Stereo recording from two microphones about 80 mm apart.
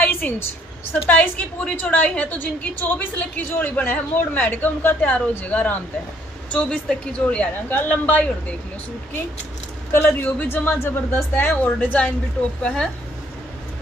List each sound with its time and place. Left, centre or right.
0.0 s a sound: left
1.0 s a woman's voice: left
9.9 s a woman's voice: left; by 12.9 s centre